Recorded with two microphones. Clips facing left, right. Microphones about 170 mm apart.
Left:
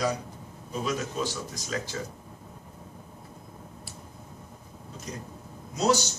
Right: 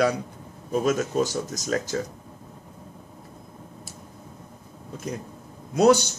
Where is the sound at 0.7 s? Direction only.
50° right (ahead or behind).